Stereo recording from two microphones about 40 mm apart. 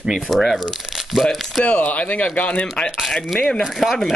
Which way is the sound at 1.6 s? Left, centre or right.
Left.